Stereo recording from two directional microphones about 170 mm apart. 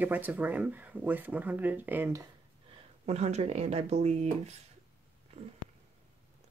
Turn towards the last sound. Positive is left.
turn(degrees=-40)  # may be behind; listen again after turning